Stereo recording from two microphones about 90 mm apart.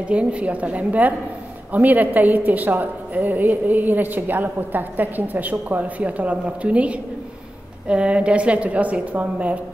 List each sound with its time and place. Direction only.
0.1 s a woman's voice: 15° right (ahead or behind)